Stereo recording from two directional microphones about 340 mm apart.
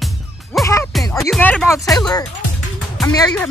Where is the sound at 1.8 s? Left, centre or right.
Centre.